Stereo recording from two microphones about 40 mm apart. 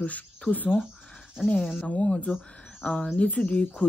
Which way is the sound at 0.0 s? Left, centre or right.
Left.